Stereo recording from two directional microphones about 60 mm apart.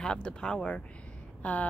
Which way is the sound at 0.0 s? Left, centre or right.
Centre.